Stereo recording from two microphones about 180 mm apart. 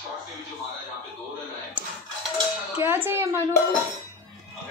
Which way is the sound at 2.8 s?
10° right (ahead or behind).